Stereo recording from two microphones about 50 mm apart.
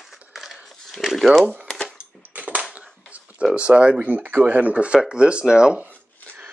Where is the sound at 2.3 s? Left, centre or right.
Right.